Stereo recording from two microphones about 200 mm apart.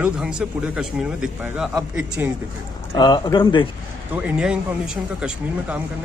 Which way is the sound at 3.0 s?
20° left (ahead or behind).